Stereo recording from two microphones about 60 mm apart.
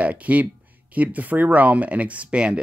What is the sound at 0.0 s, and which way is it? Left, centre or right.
Speech, right.